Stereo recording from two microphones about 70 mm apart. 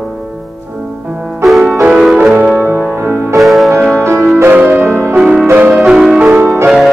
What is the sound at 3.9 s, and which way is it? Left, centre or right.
Music, right.